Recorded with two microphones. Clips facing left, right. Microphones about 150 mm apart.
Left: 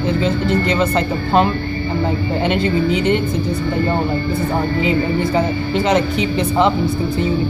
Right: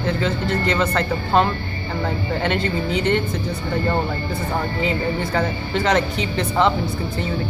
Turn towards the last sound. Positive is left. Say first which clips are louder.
# left 4 dB
turn(degrees=15)  # may be behind; listen again after turning